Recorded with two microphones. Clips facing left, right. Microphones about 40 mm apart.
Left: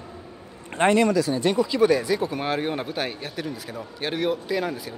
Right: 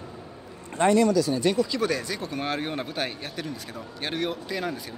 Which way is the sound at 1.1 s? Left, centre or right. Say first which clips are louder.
Left 1 dB; left.